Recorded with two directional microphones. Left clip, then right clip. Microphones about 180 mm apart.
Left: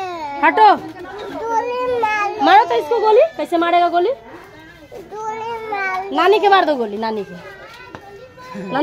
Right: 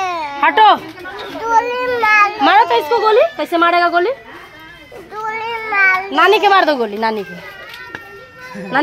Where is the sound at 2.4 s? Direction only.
15° right (ahead or behind).